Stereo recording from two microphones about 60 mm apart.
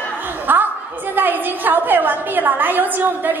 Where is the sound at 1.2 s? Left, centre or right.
Right.